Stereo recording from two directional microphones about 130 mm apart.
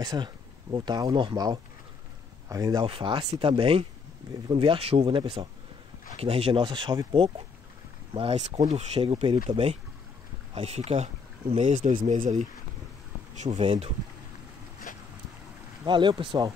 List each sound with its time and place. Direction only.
0.0 s speech: 35° right (ahead or behind)
8.1 s speech: 50° right (ahead or behind)
14.9 s boat: 90° left
15.8 s speech: 35° right (ahead or behind)